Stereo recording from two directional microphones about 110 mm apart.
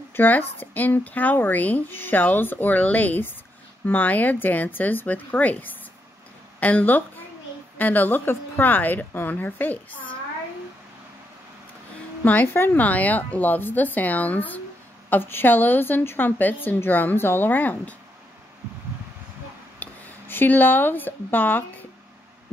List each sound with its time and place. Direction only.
0.1 s speech: 20° left (ahead or behind)
12.3 s speech: 15° left (ahead or behind)
19.8 s speech: 15° left (ahead or behind)